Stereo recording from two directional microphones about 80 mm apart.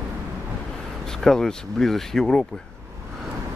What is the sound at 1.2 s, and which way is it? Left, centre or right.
Speech, centre.